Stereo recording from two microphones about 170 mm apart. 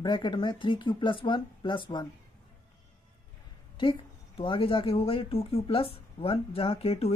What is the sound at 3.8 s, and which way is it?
Speech, 30° left (ahead or behind).